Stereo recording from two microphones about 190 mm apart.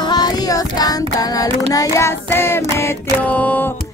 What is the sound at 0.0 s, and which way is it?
Child singing, 20° left (ahead or behind).